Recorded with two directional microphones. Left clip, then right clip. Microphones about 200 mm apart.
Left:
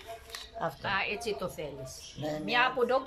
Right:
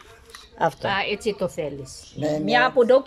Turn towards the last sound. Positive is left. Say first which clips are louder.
# right 10 dB
turn(degrees=-40)  # may be behind; listen again after turning